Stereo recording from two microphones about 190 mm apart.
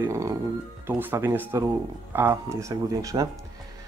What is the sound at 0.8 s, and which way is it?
Speech, 10° right (ahead or behind).